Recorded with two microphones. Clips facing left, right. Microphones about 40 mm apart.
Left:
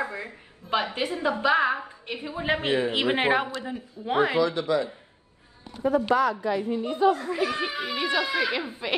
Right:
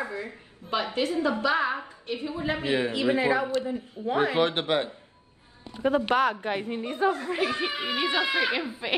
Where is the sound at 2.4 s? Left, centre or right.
Left.